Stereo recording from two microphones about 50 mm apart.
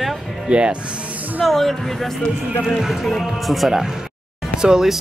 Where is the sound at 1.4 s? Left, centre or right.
Centre.